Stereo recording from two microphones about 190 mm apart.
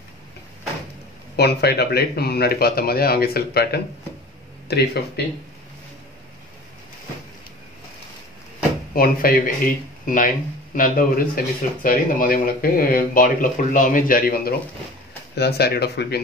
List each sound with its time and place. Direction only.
1.3 s a man's voice: 60° left (ahead or behind)
8.9 s a man's voice: 50° left (ahead or behind)